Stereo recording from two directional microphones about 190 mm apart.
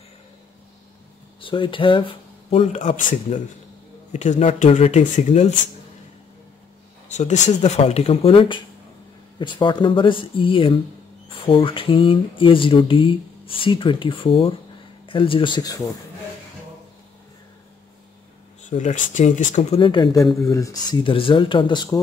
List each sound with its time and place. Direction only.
1.4 s speech: 25° left (ahead or behind)
7.1 s speech: 40° left (ahead or behind); by 15.9 s 20° left (ahead or behind)
18.7 s speech: 40° left (ahead or behind)
19.8 s speech: 25° left (ahead or behind)